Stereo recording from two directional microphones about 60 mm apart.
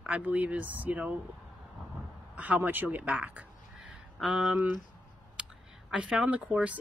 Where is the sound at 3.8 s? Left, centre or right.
Centre.